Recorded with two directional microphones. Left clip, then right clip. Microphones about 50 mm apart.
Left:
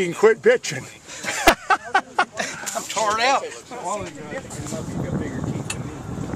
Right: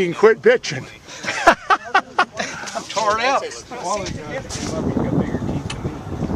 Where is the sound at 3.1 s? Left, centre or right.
Left.